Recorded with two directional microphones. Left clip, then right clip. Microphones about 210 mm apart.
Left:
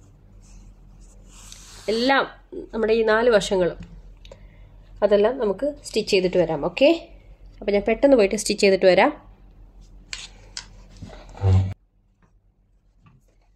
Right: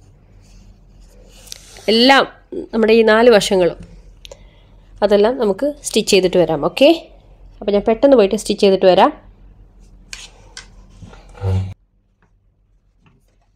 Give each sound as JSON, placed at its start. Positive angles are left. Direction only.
{"t": 1.5, "sound": "speech", "side_deg": -40}
{"t": 3.8, "sound": "a sound", "side_deg": -35}
{"t": 4.9, "sound": "a woman's voice", "side_deg": -45}
{"t": 7.5, "sound": "speech", "side_deg": -25}
{"t": 10.0, "sound": "rub", "side_deg": -25}